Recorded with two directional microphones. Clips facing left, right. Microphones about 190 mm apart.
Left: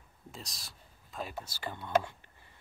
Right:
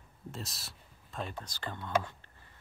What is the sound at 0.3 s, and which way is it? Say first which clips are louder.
Speech: right 4 dB; centre (ahead or behind).